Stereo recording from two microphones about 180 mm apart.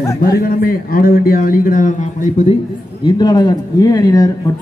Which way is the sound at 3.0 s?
25° left (ahead or behind).